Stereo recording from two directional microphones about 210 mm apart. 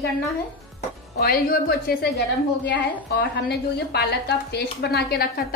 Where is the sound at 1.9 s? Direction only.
50° left (ahead or behind).